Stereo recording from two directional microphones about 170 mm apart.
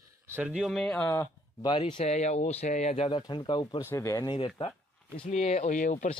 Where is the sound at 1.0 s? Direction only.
15° left (ahead or behind).